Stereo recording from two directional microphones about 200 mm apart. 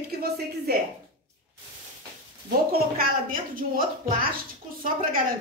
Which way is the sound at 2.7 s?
45° right (ahead or behind).